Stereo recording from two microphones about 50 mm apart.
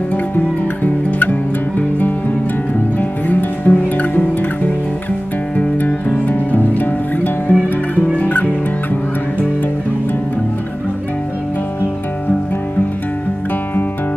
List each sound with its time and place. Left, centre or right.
1.8 s music: left
5.8 s music: left